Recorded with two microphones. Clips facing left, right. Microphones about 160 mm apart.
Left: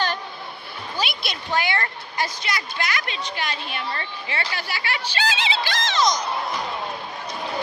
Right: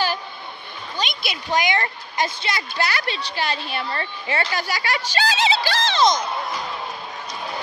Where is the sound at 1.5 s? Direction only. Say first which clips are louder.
Right 3 dB; 15° right (ahead or behind).